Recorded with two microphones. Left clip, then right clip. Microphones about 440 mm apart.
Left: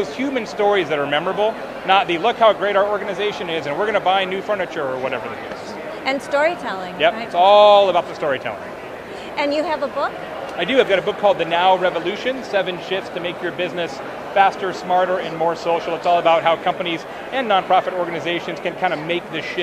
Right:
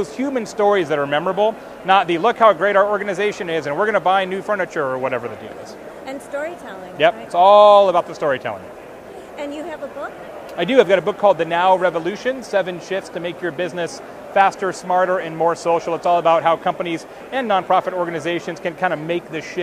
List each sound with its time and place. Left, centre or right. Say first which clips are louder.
0.0 s speech: even; right
6.0 s a woman's voice: left 9 dB; left
7.0 s speech: right 2 dB; right
9.4 s a woman's voice: left 9 dB; centre
10.6 s speech: right 2 dB; right